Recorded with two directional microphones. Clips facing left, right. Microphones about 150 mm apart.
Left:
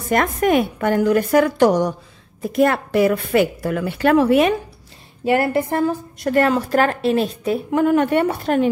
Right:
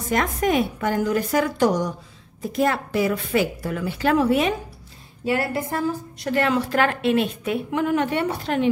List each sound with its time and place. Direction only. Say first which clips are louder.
0.1 s a woman's voice: left 4 dB; 60° left (ahead or behind)